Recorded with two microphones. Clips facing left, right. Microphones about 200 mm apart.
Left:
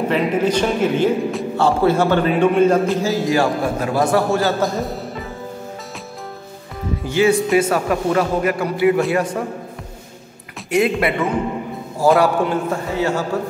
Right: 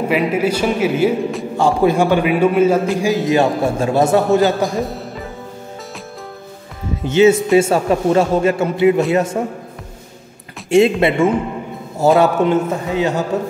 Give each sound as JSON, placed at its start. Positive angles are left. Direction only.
{"t": 0.1, "sound": "a man's voice", "side_deg": -10}
{"t": 3.1, "sound": "a man's voice", "side_deg": -20}
{"t": 4.6, "sound": "music", "side_deg": 0}
{"t": 7.1, "sound": "a man's voice", "side_deg": -20}
{"t": 10.7, "sound": "a man's voice", "side_deg": -25}